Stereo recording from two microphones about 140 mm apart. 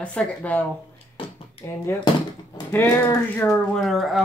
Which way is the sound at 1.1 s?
40° left (ahead or behind).